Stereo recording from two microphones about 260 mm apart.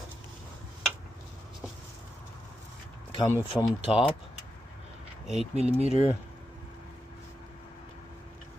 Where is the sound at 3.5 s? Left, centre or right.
Centre.